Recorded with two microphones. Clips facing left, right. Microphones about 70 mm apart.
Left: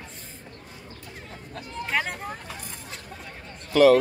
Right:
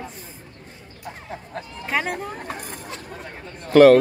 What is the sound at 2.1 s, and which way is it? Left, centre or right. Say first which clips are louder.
Speech: right 5 dB; right.